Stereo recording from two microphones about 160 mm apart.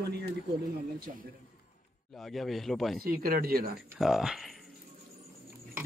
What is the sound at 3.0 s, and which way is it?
Speech, 65° right (ahead or behind).